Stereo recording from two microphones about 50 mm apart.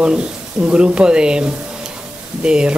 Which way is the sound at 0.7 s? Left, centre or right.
Right.